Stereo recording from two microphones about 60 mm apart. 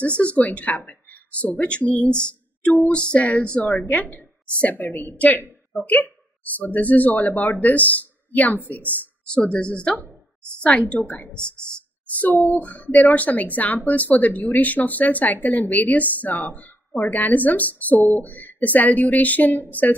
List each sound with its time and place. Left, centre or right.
0.2 s speech: left
2.6 s speech: left
2.9 s a woman's voice: centre
4.8 s a woman's voice: left
11.2 s speech: right
12.5 s speech: left